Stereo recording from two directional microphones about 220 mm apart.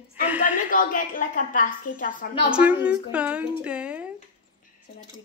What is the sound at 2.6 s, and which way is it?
A woman's voice, 5° right (ahead or behind).